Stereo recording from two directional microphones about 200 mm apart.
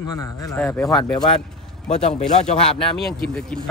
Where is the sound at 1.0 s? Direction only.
25° left (ahead or behind).